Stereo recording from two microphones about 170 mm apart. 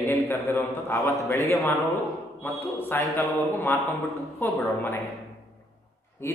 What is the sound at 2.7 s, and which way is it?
A man's voice, 10° left (ahead or behind).